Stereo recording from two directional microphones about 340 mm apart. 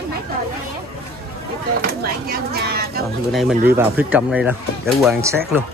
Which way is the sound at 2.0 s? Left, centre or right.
Right.